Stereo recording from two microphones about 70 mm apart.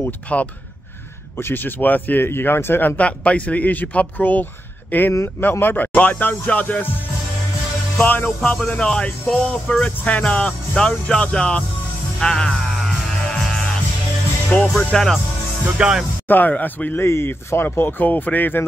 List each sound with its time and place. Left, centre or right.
0.3 s speech: centre; by 3.0 s left
3.0 s speech: centre
5.1 s speech: left
8.0 s speech: left
8.4 s speech: centre
14.5 s speech: centre
14.9 s speech: centre
15.8 s speech: centre
16.3 s speech: left
17.0 s speech: left